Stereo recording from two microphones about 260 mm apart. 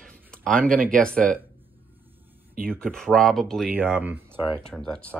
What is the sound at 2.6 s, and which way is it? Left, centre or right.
Speech, centre.